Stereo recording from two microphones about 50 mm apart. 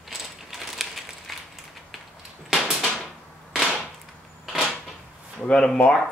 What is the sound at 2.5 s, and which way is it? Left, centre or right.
Door, centre.